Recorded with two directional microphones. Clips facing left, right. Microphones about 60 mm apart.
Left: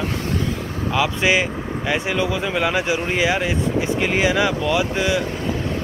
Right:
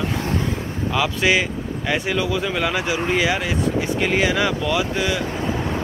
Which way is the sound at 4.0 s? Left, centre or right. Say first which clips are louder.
Even; centre.